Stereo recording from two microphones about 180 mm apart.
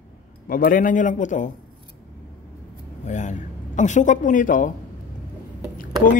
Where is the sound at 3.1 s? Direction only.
45° left (ahead or behind).